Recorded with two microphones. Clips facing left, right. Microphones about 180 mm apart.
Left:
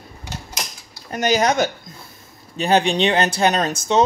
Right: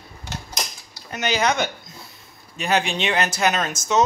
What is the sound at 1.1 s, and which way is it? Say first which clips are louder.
Speech: left 4 dB; 40° left (ahead or behind).